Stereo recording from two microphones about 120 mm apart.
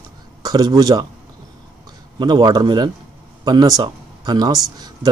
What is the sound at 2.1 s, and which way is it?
A man's voice, 35° right (ahead or behind).